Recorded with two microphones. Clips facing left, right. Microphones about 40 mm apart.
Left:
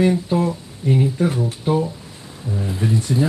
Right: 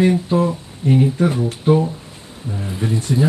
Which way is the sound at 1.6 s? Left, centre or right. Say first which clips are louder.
Right 6 dB; right.